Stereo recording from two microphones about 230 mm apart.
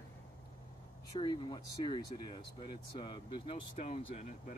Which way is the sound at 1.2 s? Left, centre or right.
Centre.